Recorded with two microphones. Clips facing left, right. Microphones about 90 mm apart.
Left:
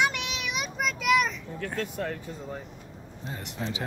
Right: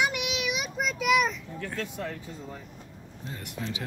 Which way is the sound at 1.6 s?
50° left (ahead or behind).